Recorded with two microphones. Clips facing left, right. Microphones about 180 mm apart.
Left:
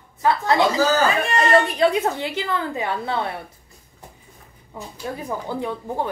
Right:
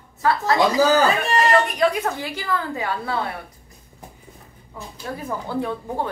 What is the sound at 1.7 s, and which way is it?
A child's voice, 25° left (ahead or behind).